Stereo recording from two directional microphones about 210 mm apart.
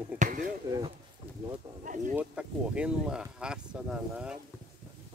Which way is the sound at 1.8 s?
35° right (ahead or behind).